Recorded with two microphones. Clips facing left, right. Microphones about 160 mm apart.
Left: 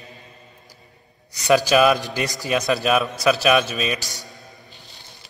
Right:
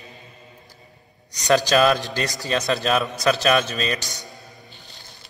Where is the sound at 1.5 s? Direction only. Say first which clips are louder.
Left 1 dB; 10° left (ahead or behind).